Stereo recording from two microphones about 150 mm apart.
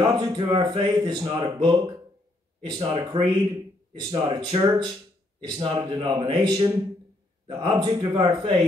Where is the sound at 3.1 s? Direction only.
40° right (ahead or behind).